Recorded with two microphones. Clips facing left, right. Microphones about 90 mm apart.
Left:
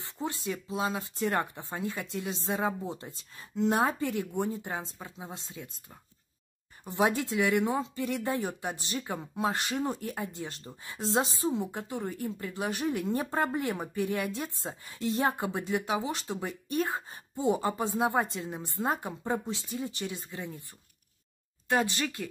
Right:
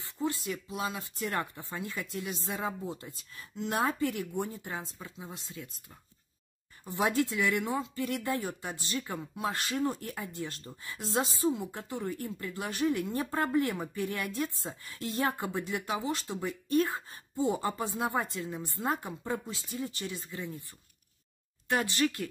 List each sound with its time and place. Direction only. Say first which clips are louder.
0.0 s speech: right 1 dB; 20° left (ahead or behind)
6.8 s speech: left 1 dB; 20° left (ahead or behind)
21.9 s speech: right 4 dB; 20° left (ahead or behind)